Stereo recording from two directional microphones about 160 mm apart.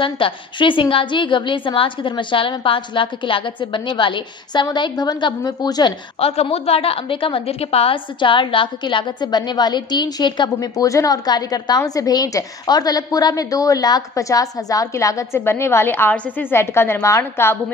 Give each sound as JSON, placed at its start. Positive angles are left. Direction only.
{"t": 0.0, "sound": "a woman's voice", "side_deg": 30}
{"t": 6.1, "sound": "a woman's voice", "side_deg": 40}